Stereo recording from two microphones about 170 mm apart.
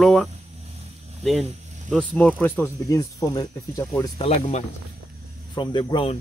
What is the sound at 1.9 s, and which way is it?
Speech, 5° left (ahead or behind).